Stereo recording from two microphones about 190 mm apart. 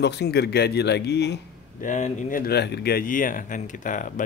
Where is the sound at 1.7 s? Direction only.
40° left (ahead or behind).